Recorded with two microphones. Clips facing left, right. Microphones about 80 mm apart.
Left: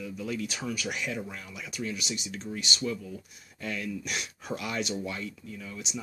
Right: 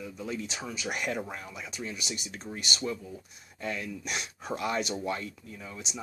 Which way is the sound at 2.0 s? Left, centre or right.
Right.